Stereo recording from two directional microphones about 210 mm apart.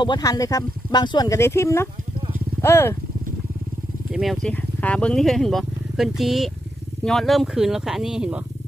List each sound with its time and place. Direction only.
0.0 s speech: 20° left (ahead or behind)
4.1 s speech: centre (ahead or behind)